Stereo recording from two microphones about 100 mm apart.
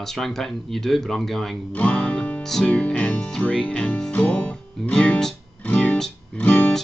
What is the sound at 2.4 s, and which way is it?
Speech, 5° left (ahead or behind).